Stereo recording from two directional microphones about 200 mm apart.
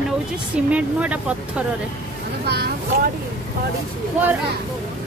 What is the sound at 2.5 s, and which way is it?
Speech, 50° right (ahead or behind).